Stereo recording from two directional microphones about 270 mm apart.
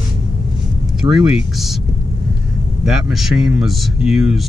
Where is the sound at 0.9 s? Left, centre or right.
Centre.